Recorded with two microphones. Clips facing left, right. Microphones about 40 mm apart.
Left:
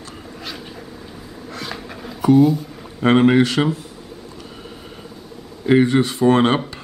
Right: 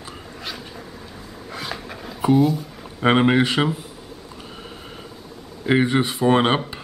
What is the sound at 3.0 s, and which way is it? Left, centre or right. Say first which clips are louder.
Speech: left 3 dB; centre.